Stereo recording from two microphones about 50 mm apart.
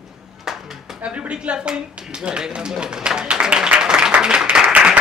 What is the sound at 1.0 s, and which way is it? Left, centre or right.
Speech, right.